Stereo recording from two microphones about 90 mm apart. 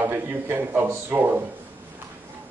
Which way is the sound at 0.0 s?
25° right (ahead or behind).